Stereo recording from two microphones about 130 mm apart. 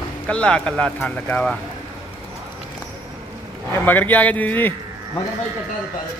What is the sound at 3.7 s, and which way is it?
A man's voice, 15° left (ahead or behind).